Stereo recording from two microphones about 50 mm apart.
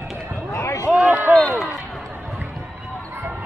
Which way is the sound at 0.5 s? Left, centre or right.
Left.